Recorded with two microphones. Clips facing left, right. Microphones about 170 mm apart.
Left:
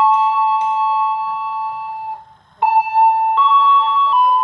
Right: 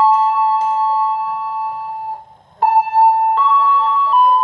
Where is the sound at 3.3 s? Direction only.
40° right (ahead or behind).